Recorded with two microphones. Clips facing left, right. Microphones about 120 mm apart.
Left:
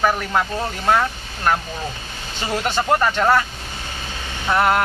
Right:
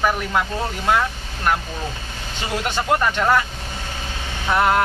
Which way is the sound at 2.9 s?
15° left (ahead or behind).